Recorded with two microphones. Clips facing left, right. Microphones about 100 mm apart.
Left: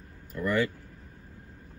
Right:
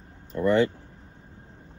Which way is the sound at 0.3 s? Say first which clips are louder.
Right 6 dB; 25° right (ahead or behind).